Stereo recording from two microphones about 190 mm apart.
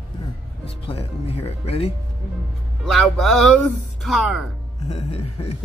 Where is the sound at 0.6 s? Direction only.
30° left (ahead or behind).